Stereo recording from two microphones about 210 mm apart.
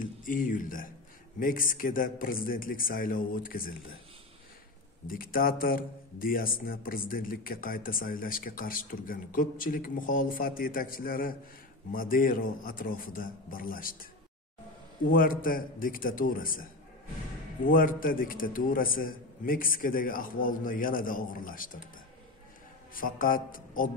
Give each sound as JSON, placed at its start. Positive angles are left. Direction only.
{"t": 0.0, "sound": "a man's voice", "side_deg": 40}
{"t": 5.0, "sound": "a man's voice", "side_deg": 40}
{"t": 15.0, "sound": "a man's voice", "side_deg": 40}
{"t": 17.6, "sound": "a man's voice", "side_deg": 40}
{"t": 22.9, "sound": "a man's voice", "side_deg": 40}